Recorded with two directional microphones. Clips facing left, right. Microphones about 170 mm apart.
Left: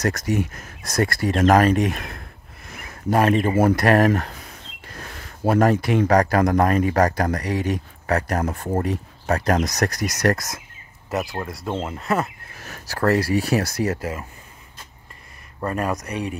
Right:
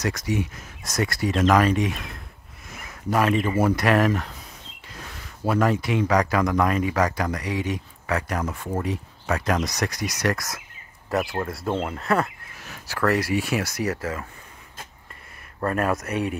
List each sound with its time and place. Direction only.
0.0 s speech: 45° left (ahead or behind)
3.1 s speech: 45° left (ahead or behind)
5.5 s speech: 45° left (ahead or behind)
6.2 s speech: 40° left (ahead or behind)
10.3 s speech: 20° left (ahead or behind)
11.3 s speech: centre (ahead or behind)
12.5 s speech: 45° left (ahead or behind)
15.7 s speech: centre (ahead or behind)